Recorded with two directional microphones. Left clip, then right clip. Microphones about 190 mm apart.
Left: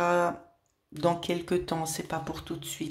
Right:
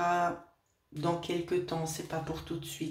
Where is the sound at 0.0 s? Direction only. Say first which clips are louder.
Left 3 dB; 40° left (ahead or behind).